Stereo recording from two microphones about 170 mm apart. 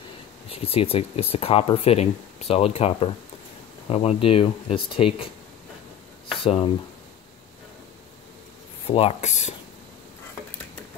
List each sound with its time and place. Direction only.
0.5 s speech: 35° left (ahead or behind)
6.4 s speech: 35° left (ahead or behind)
8.8 s speech: 35° left (ahead or behind)